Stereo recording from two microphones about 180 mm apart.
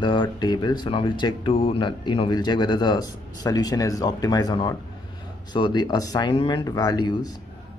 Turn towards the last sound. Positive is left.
turn(degrees=20)  # may be behind; listen again after turning